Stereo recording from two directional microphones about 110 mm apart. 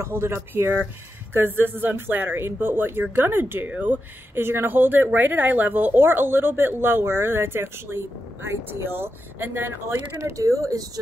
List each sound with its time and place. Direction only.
0.0 s speech: 20° right (ahead or behind)
10.1 s speech: 30° right (ahead or behind)